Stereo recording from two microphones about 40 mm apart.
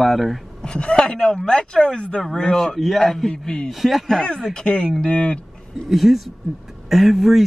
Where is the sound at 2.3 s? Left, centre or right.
Centre.